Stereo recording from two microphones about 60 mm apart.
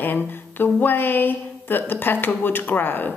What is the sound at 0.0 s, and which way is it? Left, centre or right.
A woman's voice, left.